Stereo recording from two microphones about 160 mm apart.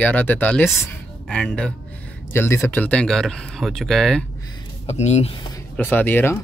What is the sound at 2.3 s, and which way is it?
Speech, 15° left (ahead or behind).